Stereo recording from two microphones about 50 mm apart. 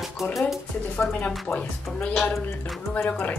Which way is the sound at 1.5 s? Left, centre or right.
Left.